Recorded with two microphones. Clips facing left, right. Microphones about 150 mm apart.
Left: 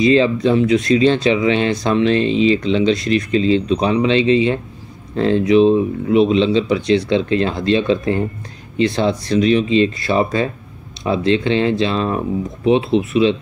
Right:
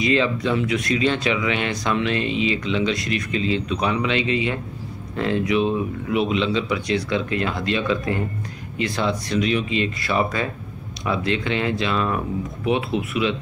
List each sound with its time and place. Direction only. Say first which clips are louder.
0.0 s speech: left 7 dB; 30° left (ahead or behind)